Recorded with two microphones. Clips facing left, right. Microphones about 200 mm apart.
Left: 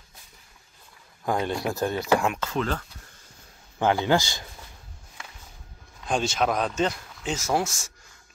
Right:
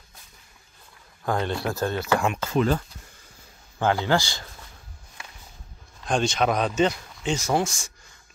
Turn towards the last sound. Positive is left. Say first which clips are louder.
# right 2 dB
turn(degrees=5)  # may be behind; listen again after turning